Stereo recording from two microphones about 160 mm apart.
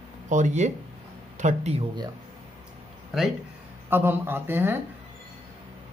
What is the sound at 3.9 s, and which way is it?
Speech, 15° right (ahead or behind).